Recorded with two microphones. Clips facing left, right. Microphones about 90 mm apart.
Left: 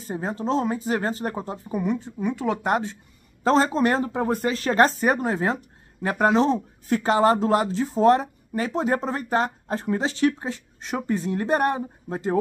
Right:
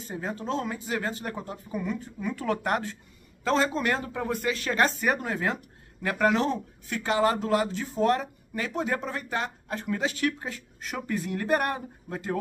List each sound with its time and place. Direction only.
0.0 s speech: 35° left (ahead or behind)
3.4 s speech: 35° left (ahead or behind)
6.9 s speech: 35° left (ahead or behind)